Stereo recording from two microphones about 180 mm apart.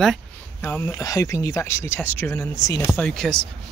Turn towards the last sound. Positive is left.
turn(degrees=5)  # may be behind; listen again after turning